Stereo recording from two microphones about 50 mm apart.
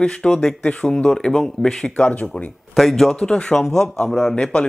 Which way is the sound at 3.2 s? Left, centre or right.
Centre.